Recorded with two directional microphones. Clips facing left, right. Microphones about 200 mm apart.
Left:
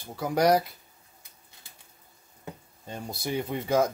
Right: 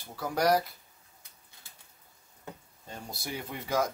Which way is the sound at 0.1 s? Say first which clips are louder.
Left 4 dB; 20° left (ahead or behind).